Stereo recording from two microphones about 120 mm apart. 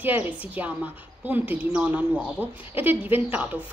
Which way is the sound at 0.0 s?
15° right (ahead or behind).